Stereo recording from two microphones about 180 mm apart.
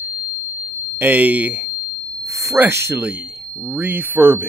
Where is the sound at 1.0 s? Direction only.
10° right (ahead or behind).